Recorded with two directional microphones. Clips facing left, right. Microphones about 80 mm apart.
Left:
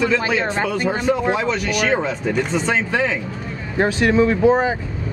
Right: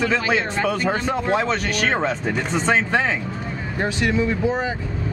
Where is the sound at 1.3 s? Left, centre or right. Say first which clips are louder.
Left 1 dB; right.